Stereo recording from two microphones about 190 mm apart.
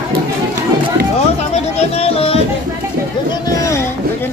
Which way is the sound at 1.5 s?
30° left (ahead or behind).